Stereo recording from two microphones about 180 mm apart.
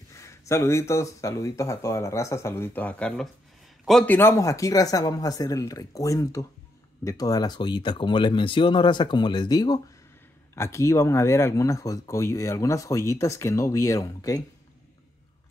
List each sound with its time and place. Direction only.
0.1 s speech: 15° left (ahead or behind)